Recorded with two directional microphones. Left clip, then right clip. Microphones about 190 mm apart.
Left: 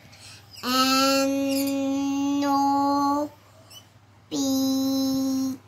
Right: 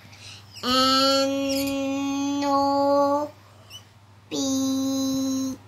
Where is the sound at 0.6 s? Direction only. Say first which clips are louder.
Right 2 dB; 5° right (ahead or behind).